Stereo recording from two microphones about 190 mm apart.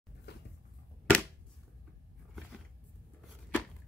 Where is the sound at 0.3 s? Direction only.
60° left (ahead or behind).